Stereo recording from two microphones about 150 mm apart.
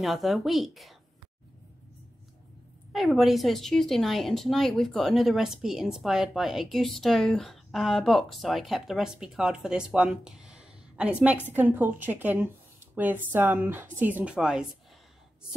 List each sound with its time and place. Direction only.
0.0 s a woman's voice: centre (ahead or behind)
2.9 s a woman's voice: centre (ahead or behind)